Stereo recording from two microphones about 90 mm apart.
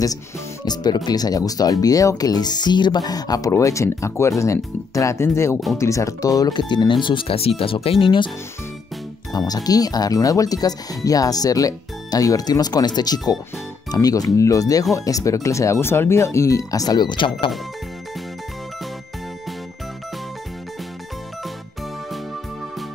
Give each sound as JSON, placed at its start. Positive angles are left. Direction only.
{"t": 0.7, "sound": "speech", "side_deg": 50}
{"t": 6.7, "sound": "speech", "side_deg": 60}
{"t": 9.5, "sound": "speech", "side_deg": 45}